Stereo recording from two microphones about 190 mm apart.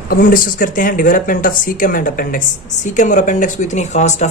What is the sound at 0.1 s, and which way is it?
Speech, 45° left (ahead or behind).